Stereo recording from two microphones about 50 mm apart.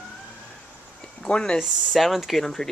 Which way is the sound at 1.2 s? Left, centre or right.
Centre.